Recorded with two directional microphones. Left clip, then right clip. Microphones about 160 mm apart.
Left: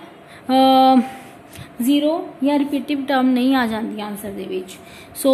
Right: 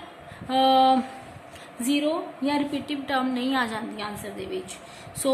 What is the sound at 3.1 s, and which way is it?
A woman's voice, 40° left (ahead or behind).